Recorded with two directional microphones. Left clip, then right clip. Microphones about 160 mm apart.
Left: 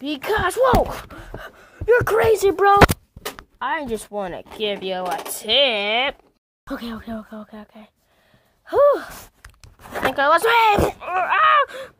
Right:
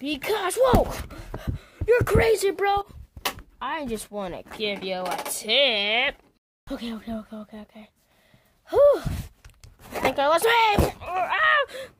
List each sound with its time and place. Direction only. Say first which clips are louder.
0.0 s speech: left 5 dB; centre (ahead or behind)
0.8 s a sound: left 4 dB; centre (ahead or behind)
2.5 s speech: left 8 dB; 25° left (ahead or behind)
3.5 s speech: left 6 dB; 10° left (ahead or behind)
10.1 s speech: left 5 dB; 5° left (ahead or behind)
10.6 s speech: left 5 dB; 20° left (ahead or behind)